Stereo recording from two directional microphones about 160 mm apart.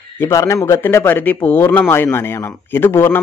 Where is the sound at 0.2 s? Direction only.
20° left (ahead or behind).